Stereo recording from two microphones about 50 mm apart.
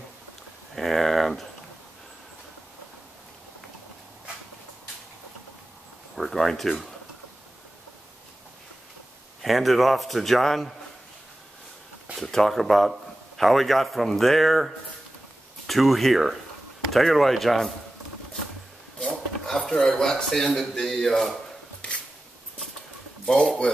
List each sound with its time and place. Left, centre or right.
0.7 s speech: centre
6.1 s a man's voice: centre
9.4 s a man's voice: centre
12.2 s a man's voice: centre
18.9 s a sound: centre
19.8 s a man's voice: centre
23.6 s speech: centre